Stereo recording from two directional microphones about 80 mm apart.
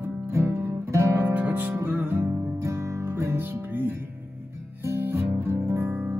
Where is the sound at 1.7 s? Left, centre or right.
Right.